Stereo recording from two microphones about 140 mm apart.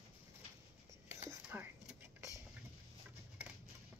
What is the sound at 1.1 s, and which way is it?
Whispering, 15° right (ahead or behind).